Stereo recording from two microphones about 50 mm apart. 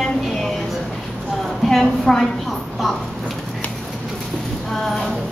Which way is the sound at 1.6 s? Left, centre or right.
Centre.